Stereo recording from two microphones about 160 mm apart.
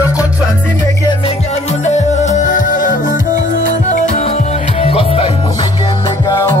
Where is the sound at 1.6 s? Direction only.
45° left (ahead or behind).